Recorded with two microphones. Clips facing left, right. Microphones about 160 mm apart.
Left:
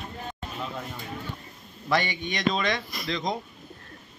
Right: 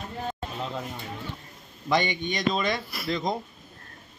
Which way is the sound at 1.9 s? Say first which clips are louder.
Right 1 dB; 20° right (ahead or behind).